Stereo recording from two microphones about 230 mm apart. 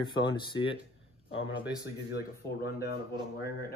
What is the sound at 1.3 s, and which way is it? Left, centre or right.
Speech, left.